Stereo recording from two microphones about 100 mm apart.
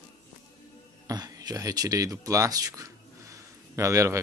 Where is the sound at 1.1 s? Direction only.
35° right (ahead or behind).